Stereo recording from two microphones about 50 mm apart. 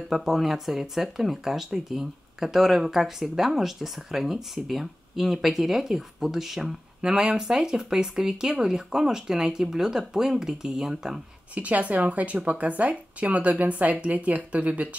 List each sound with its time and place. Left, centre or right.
0.1 s speech: centre
7.0 s speech: centre
11.5 s speech: right